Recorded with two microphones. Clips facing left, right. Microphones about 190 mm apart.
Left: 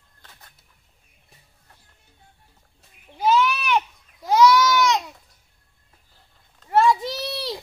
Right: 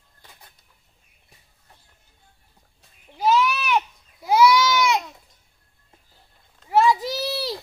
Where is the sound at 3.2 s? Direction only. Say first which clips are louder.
Even; centre (ahead or behind).